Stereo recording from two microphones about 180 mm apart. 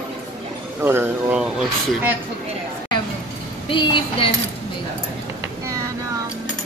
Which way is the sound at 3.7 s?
30° left (ahead or behind).